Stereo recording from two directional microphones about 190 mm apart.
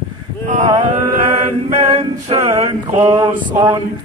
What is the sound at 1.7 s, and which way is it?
Male singing, 35° right (ahead or behind).